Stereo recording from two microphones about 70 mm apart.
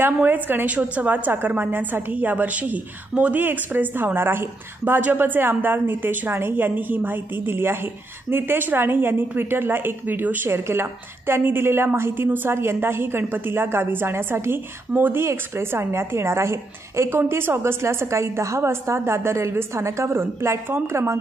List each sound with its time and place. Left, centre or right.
0.0 s a woman's voice: right